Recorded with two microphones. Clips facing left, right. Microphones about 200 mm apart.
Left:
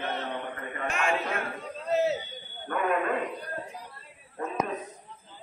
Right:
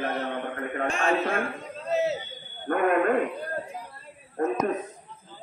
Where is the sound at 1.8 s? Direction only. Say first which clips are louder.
Even; centre (ahead or behind).